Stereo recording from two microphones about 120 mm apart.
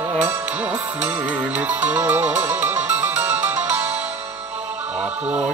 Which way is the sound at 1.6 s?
15° right (ahead or behind).